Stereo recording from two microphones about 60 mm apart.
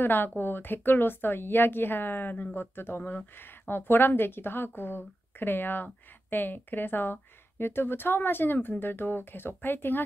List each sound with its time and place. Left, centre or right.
0.0 s a woman's voice: left
3.0 s speech: left
3.3 s a woman's voice: left